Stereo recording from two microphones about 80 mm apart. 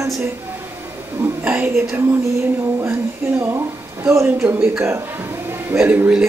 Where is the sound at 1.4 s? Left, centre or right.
Right.